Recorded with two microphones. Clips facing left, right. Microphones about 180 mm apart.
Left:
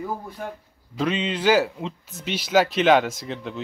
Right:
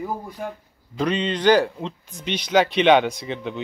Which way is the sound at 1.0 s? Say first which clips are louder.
Right 2 dB; 5° left (ahead or behind).